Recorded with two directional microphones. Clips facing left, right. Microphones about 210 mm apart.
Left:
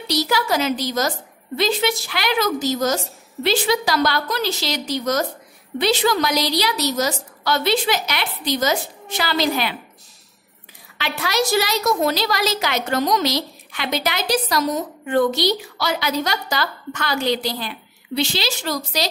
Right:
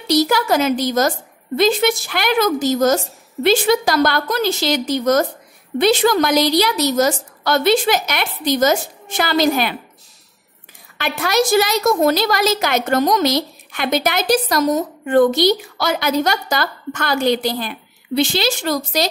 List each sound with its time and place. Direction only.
0.1 s a woman's voice: 50° right (ahead or behind)
11.0 s a woman's voice: 50° right (ahead or behind)